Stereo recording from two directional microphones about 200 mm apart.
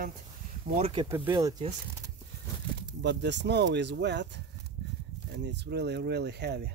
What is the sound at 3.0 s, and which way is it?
Speech, 60° right (ahead or behind).